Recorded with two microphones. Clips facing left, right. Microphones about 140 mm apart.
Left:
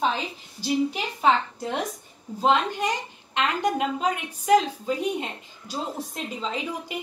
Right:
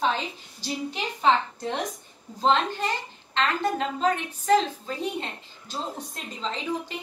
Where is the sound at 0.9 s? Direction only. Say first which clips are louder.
Left 1 dB; 10° left (ahead or behind).